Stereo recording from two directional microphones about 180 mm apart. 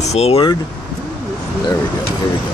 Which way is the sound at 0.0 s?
35° left (ahead or behind).